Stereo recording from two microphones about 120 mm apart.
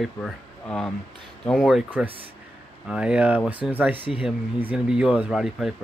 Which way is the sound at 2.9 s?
10° right (ahead or behind).